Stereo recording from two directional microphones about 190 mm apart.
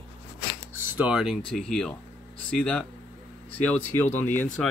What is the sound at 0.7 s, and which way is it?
Speech, 10° right (ahead or behind).